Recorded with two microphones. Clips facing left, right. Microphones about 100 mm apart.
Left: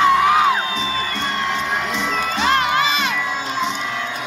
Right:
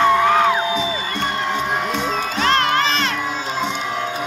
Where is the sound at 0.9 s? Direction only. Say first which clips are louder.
Even; 15° right (ahead or behind).